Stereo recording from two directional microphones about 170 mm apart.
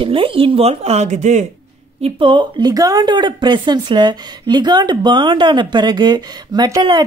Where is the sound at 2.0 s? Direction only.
30° right (ahead or behind).